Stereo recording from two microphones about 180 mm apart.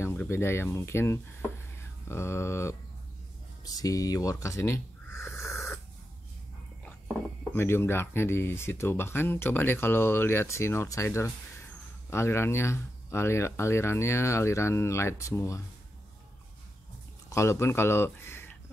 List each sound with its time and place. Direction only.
0.0 s speech: 15° left (ahead or behind)
3.6 s a sound: 20° left (ahead or behind)
7.5 s speech: 15° left (ahead or behind)
17.3 s speech: 15° left (ahead or behind)